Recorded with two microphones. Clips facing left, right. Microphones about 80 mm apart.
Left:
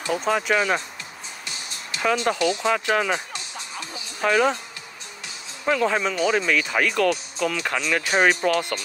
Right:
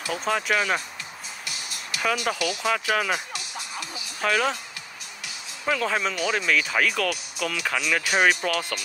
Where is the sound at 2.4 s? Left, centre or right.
Left.